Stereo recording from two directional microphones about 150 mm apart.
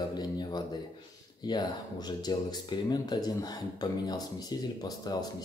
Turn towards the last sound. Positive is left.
turn(degrees=25)  # may be behind; listen again after turning